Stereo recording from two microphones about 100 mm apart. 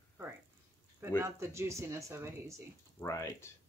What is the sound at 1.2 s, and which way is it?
Speech, 30° right (ahead or behind).